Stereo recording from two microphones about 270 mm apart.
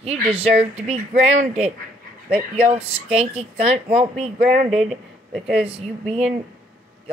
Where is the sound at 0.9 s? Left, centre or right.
Right.